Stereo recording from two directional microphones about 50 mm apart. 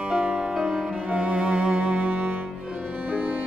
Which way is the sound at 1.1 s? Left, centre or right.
Right.